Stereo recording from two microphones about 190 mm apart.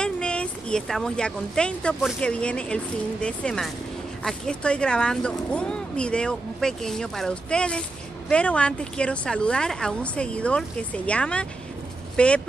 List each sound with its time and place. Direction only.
0.0 s a woman's voice: 5° left (ahead or behind)